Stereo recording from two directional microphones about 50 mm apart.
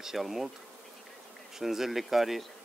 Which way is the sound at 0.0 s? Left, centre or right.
Centre.